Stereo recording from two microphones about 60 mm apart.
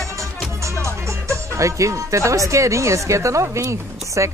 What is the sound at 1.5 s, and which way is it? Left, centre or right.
Speech, right.